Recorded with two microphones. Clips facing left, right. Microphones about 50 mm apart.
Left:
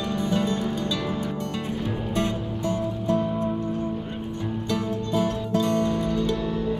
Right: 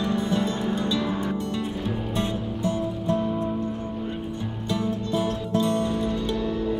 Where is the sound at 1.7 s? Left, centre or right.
Centre.